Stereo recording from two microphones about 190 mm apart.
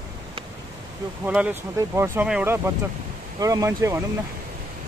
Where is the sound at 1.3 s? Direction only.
5° right (ahead or behind).